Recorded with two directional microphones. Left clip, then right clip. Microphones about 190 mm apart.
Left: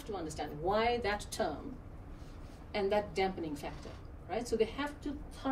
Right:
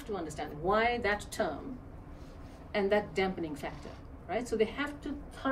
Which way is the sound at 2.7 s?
15° right (ahead or behind).